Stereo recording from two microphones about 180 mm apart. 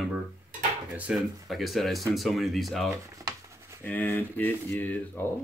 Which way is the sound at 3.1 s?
20° right (ahead or behind).